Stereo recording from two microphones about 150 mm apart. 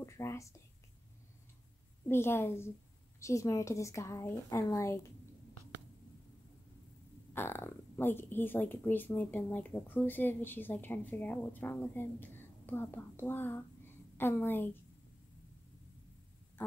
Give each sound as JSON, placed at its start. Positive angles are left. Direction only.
{"t": 0.0, "sound": "speech", "side_deg": 20}
{"t": 2.0, "sound": "a woman's voice", "side_deg": 15}
{"t": 7.3, "sound": "speech", "side_deg": 15}